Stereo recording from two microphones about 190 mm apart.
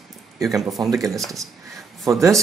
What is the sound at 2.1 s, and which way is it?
Speech, 15° right (ahead or behind).